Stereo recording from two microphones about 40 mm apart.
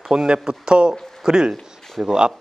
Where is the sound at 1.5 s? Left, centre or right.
Centre.